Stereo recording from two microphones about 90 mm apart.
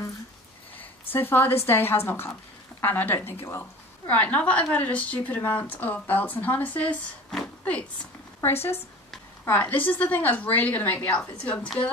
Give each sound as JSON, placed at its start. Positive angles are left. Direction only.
{"t": 0.7, "sound": "a woman's voice", "side_deg": 20}
{"t": 4.1, "sound": "a woman's voice", "side_deg": 15}
{"t": 8.4, "sound": "a woman's voice", "side_deg": 25}